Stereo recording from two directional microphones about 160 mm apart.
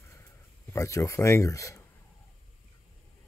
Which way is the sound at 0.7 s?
20° left (ahead or behind).